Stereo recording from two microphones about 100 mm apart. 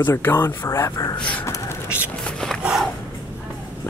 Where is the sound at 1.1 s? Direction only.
50° left (ahead or behind).